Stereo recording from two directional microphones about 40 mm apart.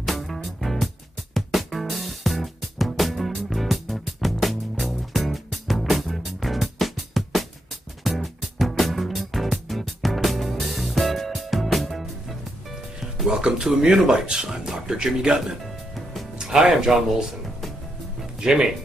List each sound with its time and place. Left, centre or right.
0.0 s music: centre
13.3 s speech: centre
15.6 s music: centre
16.3 s speech: centre
18.4 s speech: centre